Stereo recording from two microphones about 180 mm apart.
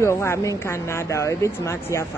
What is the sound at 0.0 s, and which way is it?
Speech, 15° left (ahead or behind).